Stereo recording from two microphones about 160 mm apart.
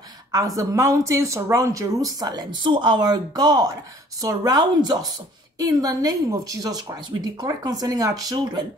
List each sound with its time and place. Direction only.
0.6 s speech: 20° right (ahead or behind)